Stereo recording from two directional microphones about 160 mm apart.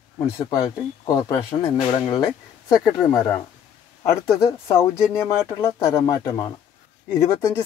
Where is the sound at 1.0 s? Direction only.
20° left (ahead or behind).